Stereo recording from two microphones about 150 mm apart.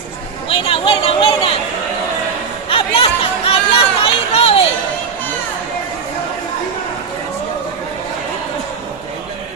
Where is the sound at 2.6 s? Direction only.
40° left (ahead or behind).